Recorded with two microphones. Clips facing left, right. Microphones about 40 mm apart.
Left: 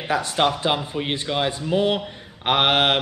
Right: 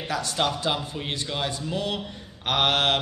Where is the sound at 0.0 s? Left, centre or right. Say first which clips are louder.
Left 5 dB; left.